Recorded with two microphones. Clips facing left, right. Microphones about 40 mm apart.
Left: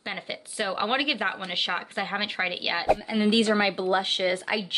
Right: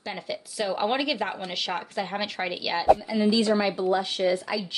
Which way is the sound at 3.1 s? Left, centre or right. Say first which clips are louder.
Even; left.